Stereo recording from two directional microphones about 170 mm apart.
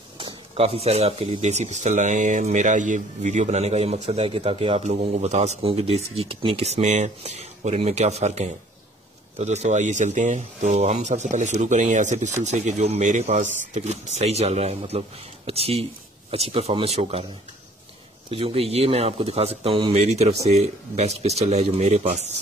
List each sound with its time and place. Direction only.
0.2 s speech: 35° right (ahead or behind)
18.3 s speech: 35° right (ahead or behind)